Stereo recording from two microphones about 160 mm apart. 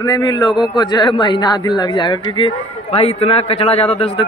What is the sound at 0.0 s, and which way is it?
A man's voice, 25° left (ahead or behind).